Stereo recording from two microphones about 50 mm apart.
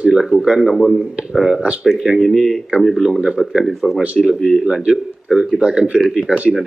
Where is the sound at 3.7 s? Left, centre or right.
Centre.